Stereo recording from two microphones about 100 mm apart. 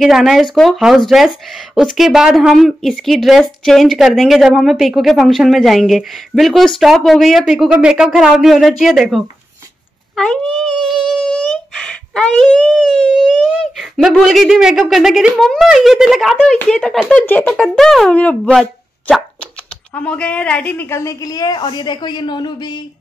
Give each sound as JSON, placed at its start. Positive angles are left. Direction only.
{"t": 0.0, "sound": "speech", "side_deg": 0}
{"t": 10.1, "sound": "a sound", "side_deg": 5}
{"t": 13.1, "sound": "speech", "side_deg": 0}
{"t": 17.3, "sound": "speech", "side_deg": 20}
{"t": 17.6, "sound": "a woman's voice", "side_deg": 0}